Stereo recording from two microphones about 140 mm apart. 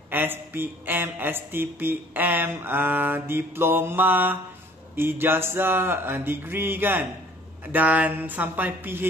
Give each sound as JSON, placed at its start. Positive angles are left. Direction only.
{"t": 0.1, "sound": "speech", "side_deg": -15}